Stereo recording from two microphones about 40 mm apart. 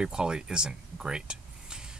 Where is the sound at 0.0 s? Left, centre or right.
Centre.